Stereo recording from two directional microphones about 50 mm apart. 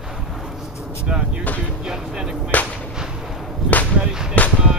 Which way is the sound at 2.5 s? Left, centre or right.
Left.